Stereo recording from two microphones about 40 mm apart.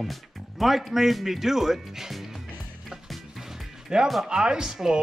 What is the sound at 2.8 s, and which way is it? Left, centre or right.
Music, centre.